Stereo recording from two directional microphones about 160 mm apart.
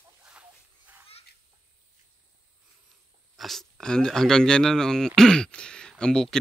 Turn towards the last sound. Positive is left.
turn(degrees=5)  # may be behind; listen again after turning